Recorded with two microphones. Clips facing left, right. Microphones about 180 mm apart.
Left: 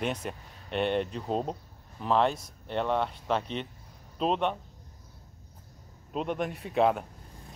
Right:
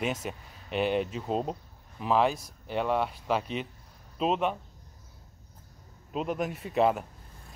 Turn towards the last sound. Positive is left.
turn(degrees=0)  # may be behind; listen again after turning